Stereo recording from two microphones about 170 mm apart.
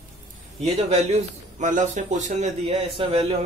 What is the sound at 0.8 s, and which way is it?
A man's voice, 45° right (ahead or behind).